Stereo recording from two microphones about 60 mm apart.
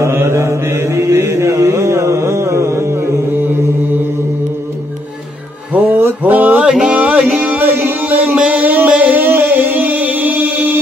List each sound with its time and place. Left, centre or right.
0.0 s mantra: right
5.9 s a sound: right
6.6 s music: centre
7.0 s music: right